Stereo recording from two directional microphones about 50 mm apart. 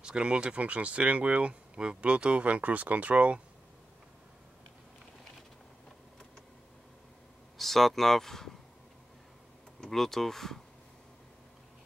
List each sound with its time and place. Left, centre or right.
0.0 s speech: centre
7.5 s speech: centre
9.8 s speech: centre